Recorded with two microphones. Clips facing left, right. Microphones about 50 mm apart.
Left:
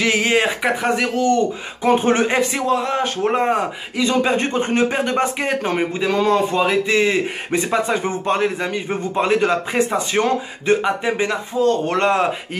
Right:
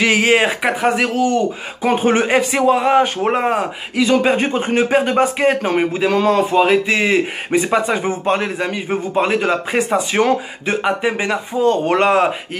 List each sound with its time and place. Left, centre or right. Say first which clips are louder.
0.0 s speech: right 3 dB; right